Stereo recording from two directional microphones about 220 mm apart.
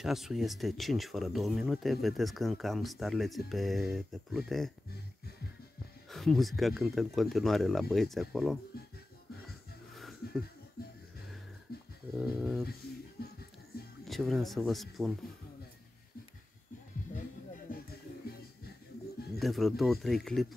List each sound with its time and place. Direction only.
0.0 s speech: centre (ahead or behind)
6.0 s speech: centre (ahead or behind)
9.9 s a sound: centre (ahead or behind)
10.8 s music: 45° left (ahead or behind)
11.7 s a sound: 45° left (ahead or behind)
12.2 s speech: centre (ahead or behind)
13.2 s music: 45° left (ahead or behind)
14.0 s speech: centre (ahead or behind)
19.4 s speech: centre (ahead or behind)